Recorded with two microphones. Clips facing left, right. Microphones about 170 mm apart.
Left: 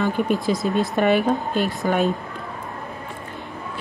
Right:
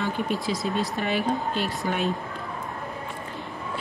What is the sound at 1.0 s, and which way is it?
Speech, 60° left (ahead or behind).